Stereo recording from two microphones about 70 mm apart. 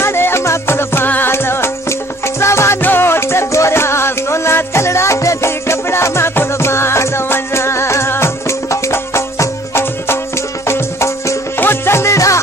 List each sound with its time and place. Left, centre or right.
0.0 s music: left